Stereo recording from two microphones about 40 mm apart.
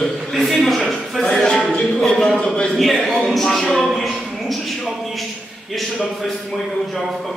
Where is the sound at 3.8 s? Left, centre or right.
Centre.